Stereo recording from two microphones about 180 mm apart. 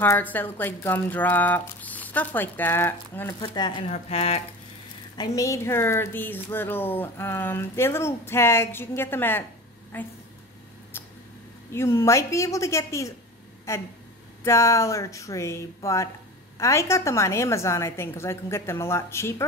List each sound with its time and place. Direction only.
0.0 s speech: 10° left (ahead or behind)
3.3 s speech: 25° left (ahead or behind)
5.1 s speech: 20° left (ahead or behind)
11.7 s speech: 15° left (ahead or behind)